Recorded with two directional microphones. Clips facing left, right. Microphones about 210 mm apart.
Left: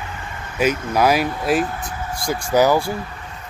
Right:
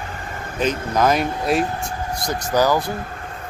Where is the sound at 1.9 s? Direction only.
40° right (ahead or behind).